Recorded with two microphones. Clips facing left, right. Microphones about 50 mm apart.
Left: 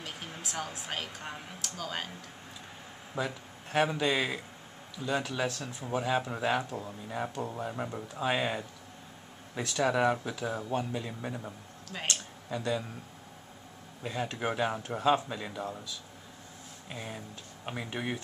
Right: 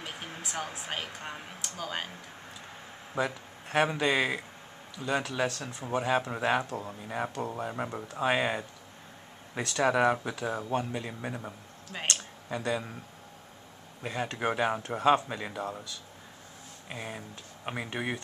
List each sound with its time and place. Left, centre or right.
0.4 s speech: centre
3.7 s speech: centre
4.9 s speech: centre
9.8 s speech: centre
14.0 s speech: centre
15.0 s speech: centre
15.2 s speech: centre
16.9 s speech: centre